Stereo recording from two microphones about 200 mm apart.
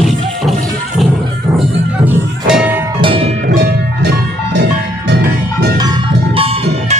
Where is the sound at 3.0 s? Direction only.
25° right (ahead or behind).